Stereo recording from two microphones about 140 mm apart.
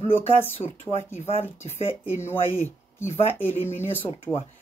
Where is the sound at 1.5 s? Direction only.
20° left (ahead or behind).